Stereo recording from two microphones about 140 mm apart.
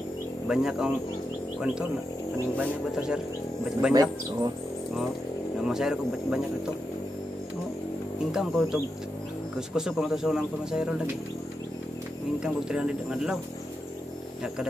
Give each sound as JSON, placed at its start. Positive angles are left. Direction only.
{"t": 0.5, "sound": "speech", "side_deg": -5}
{"t": 2.5, "sound": "speech", "side_deg": -10}
{"t": 3.9, "sound": "speech", "side_deg": -30}
{"t": 5.6, "sound": "speech", "side_deg": -5}
{"t": 8.3, "sound": "speech", "side_deg": -5}
{"t": 12.4, "sound": "speech", "side_deg": -5}